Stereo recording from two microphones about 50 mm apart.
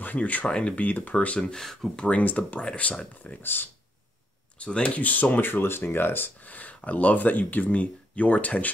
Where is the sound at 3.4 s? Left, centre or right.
Left.